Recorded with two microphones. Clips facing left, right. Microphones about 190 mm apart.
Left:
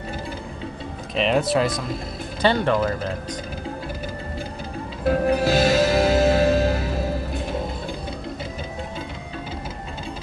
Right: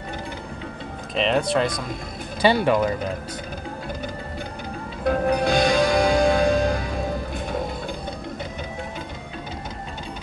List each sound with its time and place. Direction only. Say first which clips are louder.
1.1 s speech: left 1 dB; centre (ahead or behind)
2.4 s speech: right 1 dB; 10° right (ahead or behind)
5.0 s music: left 1 dB; 5° left (ahead or behind)